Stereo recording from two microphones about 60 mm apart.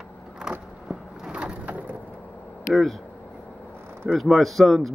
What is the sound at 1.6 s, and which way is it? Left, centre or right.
Crushing, right.